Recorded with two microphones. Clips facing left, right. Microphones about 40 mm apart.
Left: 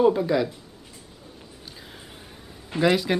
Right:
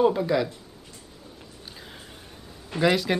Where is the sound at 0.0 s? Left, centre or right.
Centre.